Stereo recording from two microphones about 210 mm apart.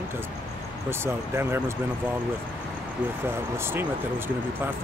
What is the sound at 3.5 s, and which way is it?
Speech, 10° right (ahead or behind).